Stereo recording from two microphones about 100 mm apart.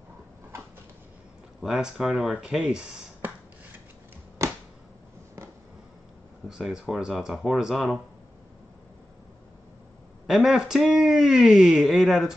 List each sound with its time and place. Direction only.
1.6 s speech: 5° right (ahead or behind)
4.4 s a sound: 30° right (ahead or behind)
6.6 s speech: 5° right (ahead or behind)
10.2 s speech: 5° right (ahead or behind)